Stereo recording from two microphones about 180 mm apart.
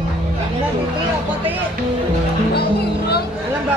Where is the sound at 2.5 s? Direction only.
60° left (ahead or behind).